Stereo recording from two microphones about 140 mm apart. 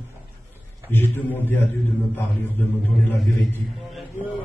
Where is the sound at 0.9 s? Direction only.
15° left (ahead or behind).